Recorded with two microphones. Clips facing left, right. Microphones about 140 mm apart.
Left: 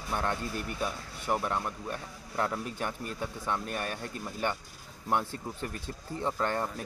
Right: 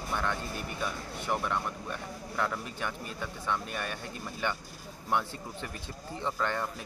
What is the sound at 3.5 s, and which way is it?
Speech, 40° left (ahead or behind).